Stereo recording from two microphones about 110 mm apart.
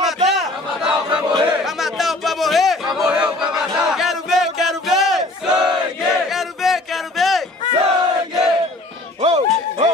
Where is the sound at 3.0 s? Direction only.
5° right (ahead or behind).